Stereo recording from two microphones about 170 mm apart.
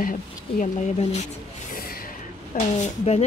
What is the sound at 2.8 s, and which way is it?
Speech, 40° left (ahead or behind).